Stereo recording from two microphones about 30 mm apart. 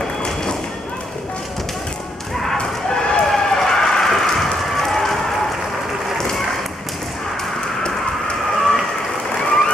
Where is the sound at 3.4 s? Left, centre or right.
Centre.